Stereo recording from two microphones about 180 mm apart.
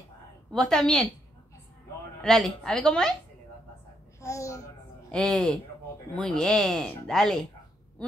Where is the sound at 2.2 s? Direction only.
Centre (ahead or behind).